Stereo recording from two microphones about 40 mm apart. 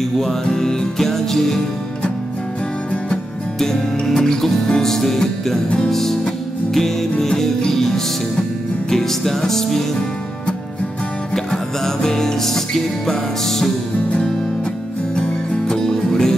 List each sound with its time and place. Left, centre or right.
0.5 s music: centre
3.5 s music: centre
11.3 s music: centre
15.1 s music: left
15.8 s music: centre